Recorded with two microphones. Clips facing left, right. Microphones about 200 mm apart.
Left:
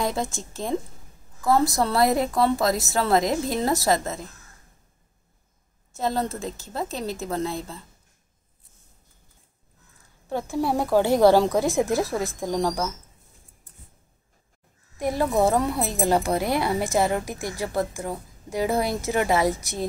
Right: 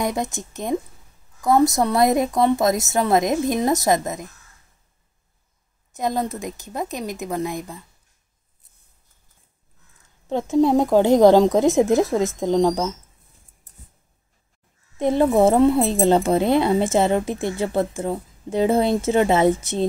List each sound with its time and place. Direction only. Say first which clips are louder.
0.0 s a woman's voice: right 2 dB; 20° right (ahead or behind)
5.9 s a woman's voice: right 2 dB; 15° right (ahead or behind)
10.2 s a woman's voice: right 7 dB; 20° right (ahead or behind)
15.0 s a woman's voice: right 6 dB; 25° right (ahead or behind)